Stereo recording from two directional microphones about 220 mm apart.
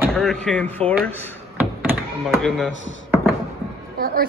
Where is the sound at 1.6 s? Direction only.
10° right (ahead or behind).